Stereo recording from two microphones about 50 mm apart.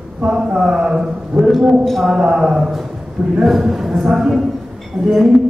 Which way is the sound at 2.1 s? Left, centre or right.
Centre.